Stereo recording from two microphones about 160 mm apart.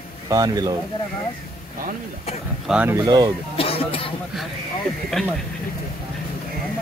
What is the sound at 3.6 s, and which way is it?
Speech, 35° left (ahead or behind).